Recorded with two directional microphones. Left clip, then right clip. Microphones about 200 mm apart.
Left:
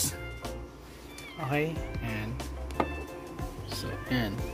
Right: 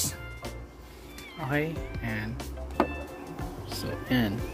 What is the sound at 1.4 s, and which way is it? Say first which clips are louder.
Speech: right 1 dB; centre (ahead or behind).